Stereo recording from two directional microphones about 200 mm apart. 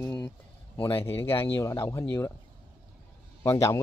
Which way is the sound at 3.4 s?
15° left (ahead or behind).